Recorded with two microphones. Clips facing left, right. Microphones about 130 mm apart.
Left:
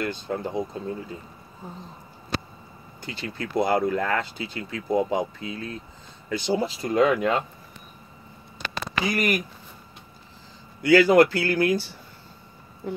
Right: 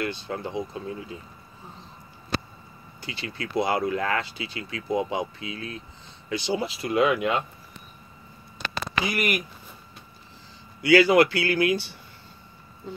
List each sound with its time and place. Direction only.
0.0 s speech: 40° left (ahead or behind)
3.0 s speech: 45° left (ahead or behind)
9.1 s speech: 40° left (ahead or behind)
10.8 s speech: 45° left (ahead or behind)